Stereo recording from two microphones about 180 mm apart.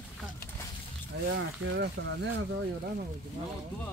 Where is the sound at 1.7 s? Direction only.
75° right (ahead or behind).